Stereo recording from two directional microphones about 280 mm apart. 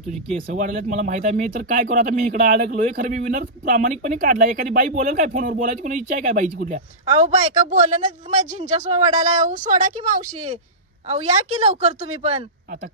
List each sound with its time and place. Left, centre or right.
0.6 s a woman's voice: right